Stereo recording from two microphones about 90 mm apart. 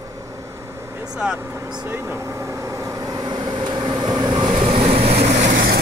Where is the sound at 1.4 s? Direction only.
30° right (ahead or behind).